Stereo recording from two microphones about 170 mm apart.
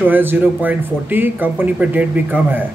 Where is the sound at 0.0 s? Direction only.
10° right (ahead or behind).